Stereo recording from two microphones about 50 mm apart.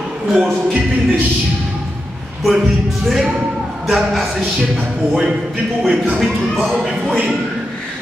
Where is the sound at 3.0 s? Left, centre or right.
Centre.